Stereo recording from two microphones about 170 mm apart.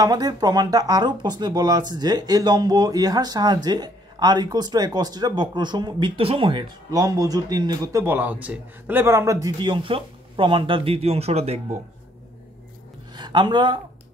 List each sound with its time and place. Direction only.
0.0 s speech: 25° right (ahead or behind)
13.1 s speech: 25° right (ahead or behind)